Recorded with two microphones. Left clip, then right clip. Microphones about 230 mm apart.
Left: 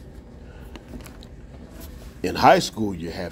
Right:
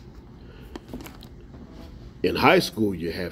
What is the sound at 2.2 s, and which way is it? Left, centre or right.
Speech, left.